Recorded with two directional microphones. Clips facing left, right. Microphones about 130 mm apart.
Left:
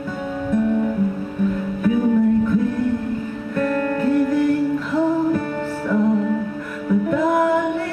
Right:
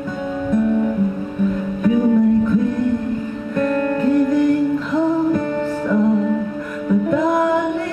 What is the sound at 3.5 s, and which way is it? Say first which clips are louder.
Music: right 2 dB; 20° right (ahead or behind).